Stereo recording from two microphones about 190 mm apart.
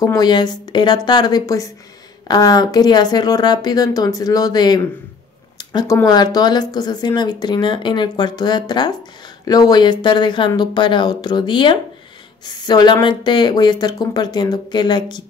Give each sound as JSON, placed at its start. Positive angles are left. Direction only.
{"t": 0.0, "sound": "speech", "side_deg": 20}
{"t": 5.6, "sound": "a sound", "side_deg": 20}
{"t": 5.9, "sound": "speech", "side_deg": 20}